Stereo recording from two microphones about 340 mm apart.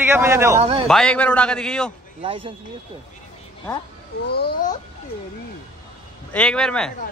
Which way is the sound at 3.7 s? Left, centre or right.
Centre.